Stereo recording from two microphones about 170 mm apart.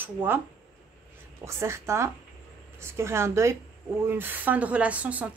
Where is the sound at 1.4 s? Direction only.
15° right (ahead or behind).